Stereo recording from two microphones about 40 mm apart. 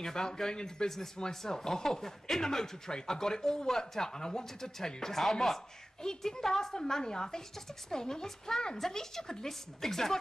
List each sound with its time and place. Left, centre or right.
0.0 s speech: centre